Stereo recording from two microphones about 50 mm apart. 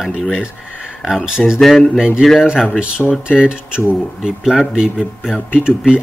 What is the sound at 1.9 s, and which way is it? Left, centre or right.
Speech, centre.